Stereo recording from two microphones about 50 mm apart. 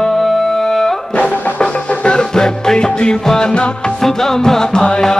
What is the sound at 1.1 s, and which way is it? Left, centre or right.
Music, left.